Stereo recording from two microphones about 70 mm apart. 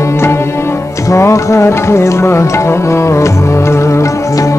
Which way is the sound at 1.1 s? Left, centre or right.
Left.